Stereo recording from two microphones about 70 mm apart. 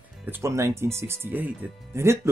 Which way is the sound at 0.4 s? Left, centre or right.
Right.